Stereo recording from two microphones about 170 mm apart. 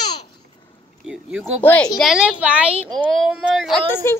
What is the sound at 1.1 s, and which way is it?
Speech, 5° right (ahead or behind).